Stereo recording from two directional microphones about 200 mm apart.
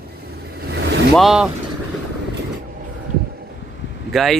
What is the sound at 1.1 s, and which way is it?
Speech, centre (ahead or behind).